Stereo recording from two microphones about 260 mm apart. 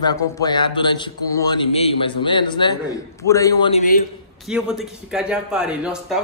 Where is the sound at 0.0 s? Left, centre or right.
Centre.